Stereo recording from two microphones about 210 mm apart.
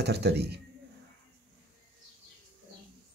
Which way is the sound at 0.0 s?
50° right (ahead or behind).